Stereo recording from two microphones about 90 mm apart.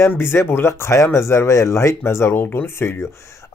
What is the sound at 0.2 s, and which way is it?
Speech, 25° left (ahead or behind).